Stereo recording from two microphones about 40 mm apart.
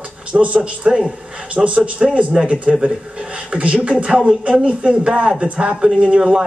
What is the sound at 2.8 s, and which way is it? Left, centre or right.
Speech, right.